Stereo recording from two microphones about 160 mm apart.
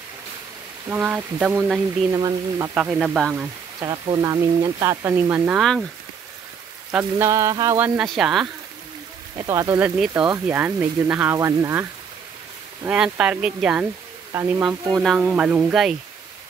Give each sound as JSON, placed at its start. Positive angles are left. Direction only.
{"t": 0.8, "sound": "rain on surface", "side_deg": -10}
{"t": 2.1, "sound": "speech", "side_deg": -25}
{"t": 2.7, "sound": "rain on surface", "side_deg": -10}
{"t": 3.8, "sound": "speech", "side_deg": -25}
{"t": 5.6, "sound": "speech", "side_deg": 0}
{"t": 6.9, "sound": "rain on surface", "side_deg": -15}
{"t": 8.0, "sound": "speech", "side_deg": 0}
{"t": 9.4, "sound": "speech", "side_deg": -20}
{"t": 9.8, "sound": "rain on surface", "side_deg": -5}
{"t": 11.3, "sound": "speech", "side_deg": -20}
{"t": 12.8, "sound": "speech", "side_deg": -5}
{"t": 14.3, "sound": "rain on surface", "side_deg": -10}
{"t": 15.0, "sound": "speech", "side_deg": -5}